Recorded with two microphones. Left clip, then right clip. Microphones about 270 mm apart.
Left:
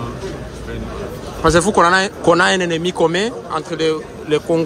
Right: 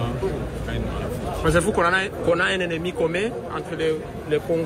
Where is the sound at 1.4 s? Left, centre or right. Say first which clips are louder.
Left 8 dB; centre.